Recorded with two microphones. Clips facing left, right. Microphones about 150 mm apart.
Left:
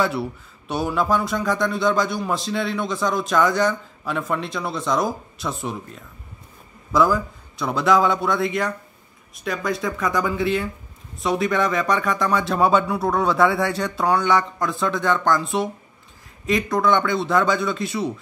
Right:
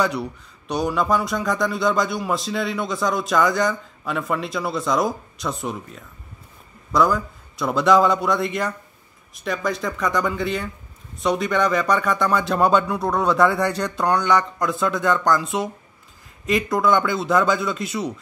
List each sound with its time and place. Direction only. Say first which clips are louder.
0.0 s speech: even; centre (ahead or behind)